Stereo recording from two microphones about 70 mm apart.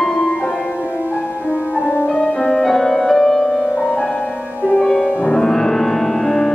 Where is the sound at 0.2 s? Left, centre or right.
Centre.